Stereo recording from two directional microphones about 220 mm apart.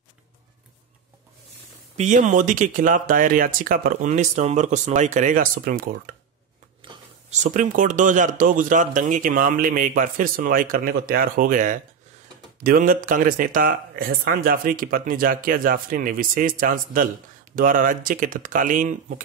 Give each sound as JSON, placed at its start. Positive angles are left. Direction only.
{"t": 2.0, "sound": "speech", "side_deg": -35}
{"t": 6.8, "sound": "a sound", "side_deg": -20}
{"t": 7.4, "sound": "speech", "side_deg": -35}